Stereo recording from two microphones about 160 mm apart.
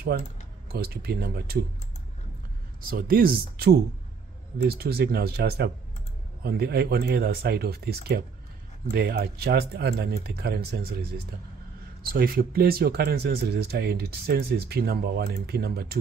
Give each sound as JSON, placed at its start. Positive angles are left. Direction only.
{"t": 0.7, "sound": "speech", "side_deg": -75}
{"t": 2.8, "sound": "speech", "side_deg": -65}